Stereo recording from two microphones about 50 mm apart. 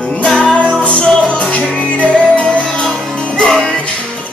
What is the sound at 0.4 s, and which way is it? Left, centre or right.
Music, left.